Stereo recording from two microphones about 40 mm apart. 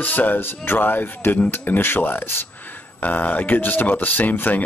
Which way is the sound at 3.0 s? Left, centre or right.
Left.